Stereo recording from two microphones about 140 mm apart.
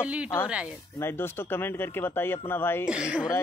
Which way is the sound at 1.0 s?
15° left (ahead or behind).